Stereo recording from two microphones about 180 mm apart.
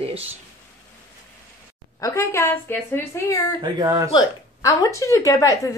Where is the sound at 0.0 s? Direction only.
35° right (ahead or behind).